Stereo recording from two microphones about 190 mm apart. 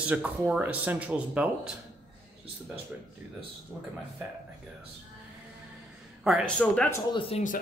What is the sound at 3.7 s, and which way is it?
Speech, centre (ahead or behind).